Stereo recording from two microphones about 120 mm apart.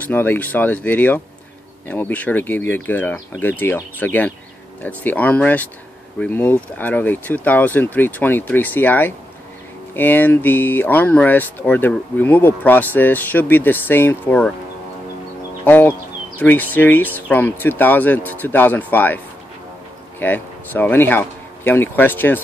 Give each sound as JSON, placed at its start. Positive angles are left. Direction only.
{"t": 0.0, "sound": "speech", "side_deg": 15}
{"t": 15.6, "sound": "speech", "side_deg": 15}